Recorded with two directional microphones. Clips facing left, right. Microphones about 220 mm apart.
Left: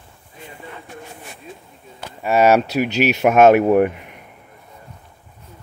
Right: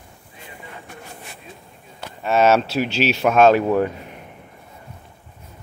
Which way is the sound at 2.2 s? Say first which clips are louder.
Left 2 dB; 10° left (ahead or behind).